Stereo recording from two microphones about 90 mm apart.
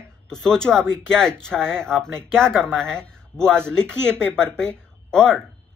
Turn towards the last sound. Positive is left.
turn(degrees=10)  # may be behind; listen again after turning